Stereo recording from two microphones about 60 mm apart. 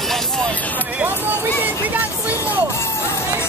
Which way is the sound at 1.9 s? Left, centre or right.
Right.